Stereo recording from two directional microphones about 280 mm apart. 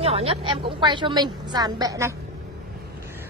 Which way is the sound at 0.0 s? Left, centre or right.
Right.